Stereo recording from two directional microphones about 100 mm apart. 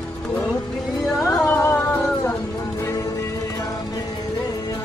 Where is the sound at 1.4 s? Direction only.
25° left (ahead or behind).